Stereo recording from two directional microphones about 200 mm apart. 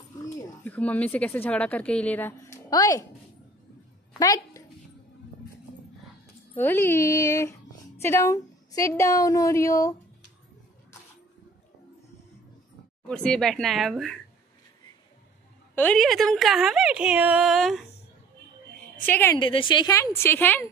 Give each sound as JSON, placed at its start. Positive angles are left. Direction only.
{"t": 0.4, "sound": "a woman's voice", "side_deg": 5}
{"t": 4.2, "sound": "speech", "side_deg": 15}
{"t": 6.5, "sound": "a woman's voice", "side_deg": 10}
{"t": 13.1, "sound": "a woman's voice", "side_deg": 5}
{"t": 15.7, "sound": "a woman's voice", "side_deg": 5}
{"t": 19.0, "sound": "a woman's voice", "side_deg": 10}
{"t": 19.3, "sound": "a woman's voice", "side_deg": 25}